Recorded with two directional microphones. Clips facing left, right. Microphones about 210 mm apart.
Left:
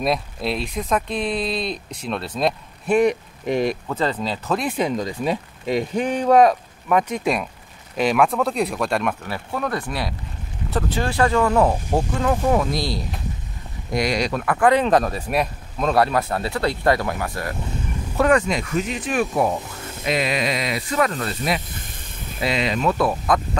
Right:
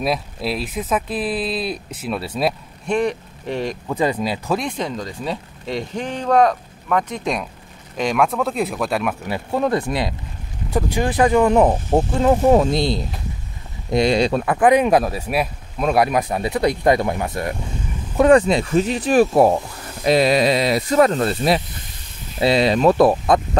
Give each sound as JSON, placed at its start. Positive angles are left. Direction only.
{"t": 0.0, "sound": "speech", "side_deg": -5}
{"t": 2.9, "sound": "speech", "side_deg": 10}
{"t": 3.8, "sound": "speech", "side_deg": -10}
{"t": 4.6, "sound": "speech", "side_deg": 10}
{"t": 9.2, "sound": "speech", "side_deg": -20}